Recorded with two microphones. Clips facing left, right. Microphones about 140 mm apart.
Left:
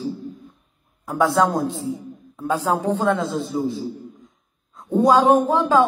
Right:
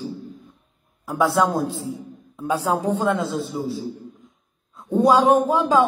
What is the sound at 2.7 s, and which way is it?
Speech, 10° left (ahead or behind).